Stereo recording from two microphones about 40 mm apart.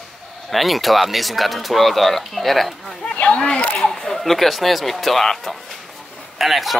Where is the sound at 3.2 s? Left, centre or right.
Left.